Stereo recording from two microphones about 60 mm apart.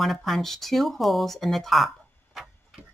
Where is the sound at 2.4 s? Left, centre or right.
Centre.